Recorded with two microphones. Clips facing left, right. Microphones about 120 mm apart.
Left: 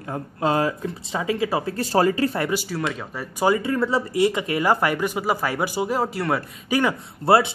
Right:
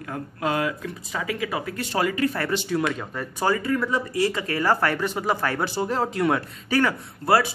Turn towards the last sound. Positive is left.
turn(degrees=25)  # may be behind; listen again after turning